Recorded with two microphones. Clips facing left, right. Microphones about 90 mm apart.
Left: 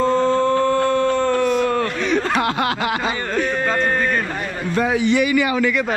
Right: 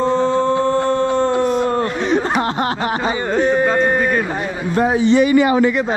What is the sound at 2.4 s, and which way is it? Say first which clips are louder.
Snicker: right 1 dB; 85° left.